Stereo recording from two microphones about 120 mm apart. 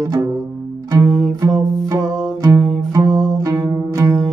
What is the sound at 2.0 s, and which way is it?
Music, 5° left (ahead or behind).